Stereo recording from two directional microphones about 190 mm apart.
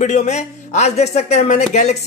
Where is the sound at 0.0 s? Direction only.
40° left (ahead or behind).